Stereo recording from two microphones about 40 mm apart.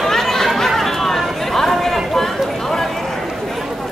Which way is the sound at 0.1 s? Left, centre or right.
Centre.